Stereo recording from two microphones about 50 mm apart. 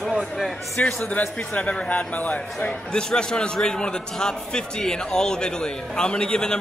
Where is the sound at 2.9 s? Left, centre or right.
Centre.